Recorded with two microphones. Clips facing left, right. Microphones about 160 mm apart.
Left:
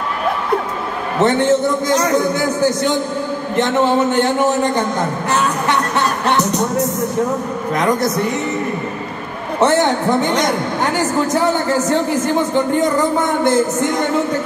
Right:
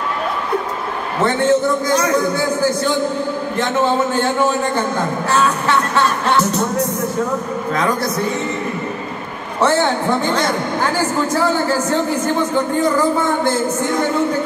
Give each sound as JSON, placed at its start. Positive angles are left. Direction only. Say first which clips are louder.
{"t": 1.2, "sound": "a man's voice", "louder": "left 1 dB", "side_deg": 20}
{"t": 3.5, "sound": "a man's voice", "louder": "left 3 dB", "side_deg": 20}
{"t": 7.7, "sound": "a man's voice", "louder": "left 3 dB", "side_deg": 20}